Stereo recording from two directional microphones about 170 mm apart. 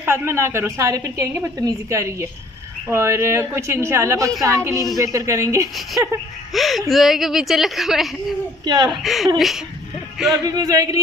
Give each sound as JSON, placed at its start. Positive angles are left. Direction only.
{"t": 0.0, "sound": "a woman's voice", "side_deg": -15}
{"t": 6.5, "sound": "a woman's voice", "side_deg": 0}
{"t": 8.6, "sound": "speech", "side_deg": -25}
{"t": 8.9, "sound": "a woman's voice", "side_deg": 0}
{"t": 10.4, "sound": "speech", "side_deg": -20}